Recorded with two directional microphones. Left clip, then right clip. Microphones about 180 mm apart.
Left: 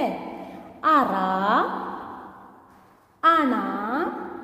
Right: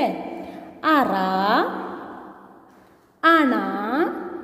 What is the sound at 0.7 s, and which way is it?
Speech, 15° right (ahead or behind).